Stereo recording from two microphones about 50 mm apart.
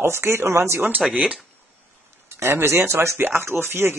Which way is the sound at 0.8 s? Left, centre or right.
Right.